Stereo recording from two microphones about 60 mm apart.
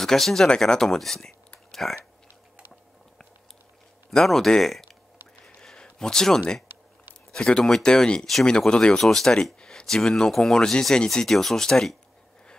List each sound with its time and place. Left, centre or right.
0.0 s speech: centre
4.1 s speech: centre
5.4 s a sound: centre
7.3 s speech: centre